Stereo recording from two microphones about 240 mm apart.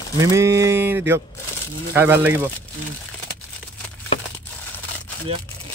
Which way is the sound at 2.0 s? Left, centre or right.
Centre.